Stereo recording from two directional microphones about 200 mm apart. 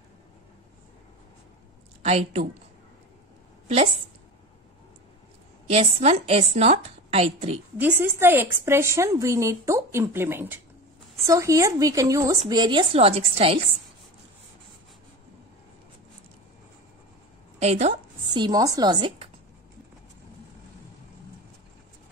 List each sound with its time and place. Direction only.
2.0 s a woman's voice: 35° right (ahead or behind)
3.6 s a woman's voice: 30° right (ahead or behind)
5.7 s a woman's voice: 30° right (ahead or behind)
7.7 s a woman's voice: 10° right (ahead or behind); by 13.6 s 30° right (ahead or behind)
17.6 s a woman's voice: 35° right (ahead or behind)
18.3 s a woman's voice: 20° right (ahead or behind)